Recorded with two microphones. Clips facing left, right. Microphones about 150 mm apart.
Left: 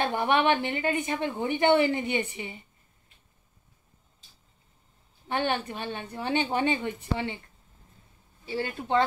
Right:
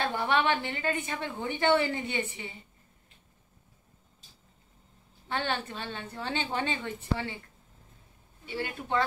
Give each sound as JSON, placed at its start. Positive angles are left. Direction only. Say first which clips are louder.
{"t": 0.0, "sound": "a woman's voice", "louder": "left 3 dB", "side_deg": 20}
{"t": 5.3, "sound": "a woman's voice", "louder": "left 4 dB", "side_deg": 15}
{"t": 8.5, "sound": "speech", "louder": "left 4 dB", "side_deg": 30}